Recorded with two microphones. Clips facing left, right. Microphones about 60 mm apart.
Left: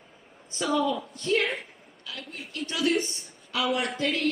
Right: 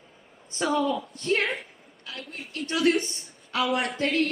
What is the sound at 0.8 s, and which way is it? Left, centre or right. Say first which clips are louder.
A woman's voice: right 1 dB; right.